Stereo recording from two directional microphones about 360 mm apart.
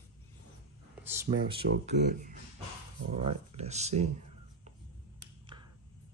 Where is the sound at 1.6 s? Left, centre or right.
Right.